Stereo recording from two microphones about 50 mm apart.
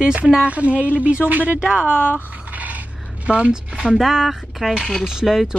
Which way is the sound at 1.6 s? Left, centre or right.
Right.